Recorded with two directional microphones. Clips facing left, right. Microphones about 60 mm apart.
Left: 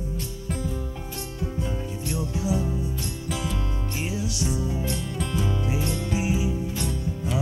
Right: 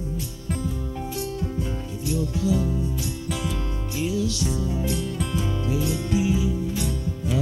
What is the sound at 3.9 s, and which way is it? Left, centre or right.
Music, left.